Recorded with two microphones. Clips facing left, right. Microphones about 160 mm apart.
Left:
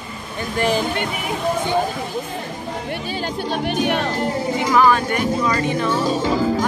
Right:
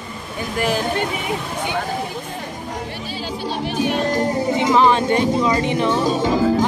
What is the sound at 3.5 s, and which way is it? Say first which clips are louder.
Speech: even; 60° left (ahead or behind).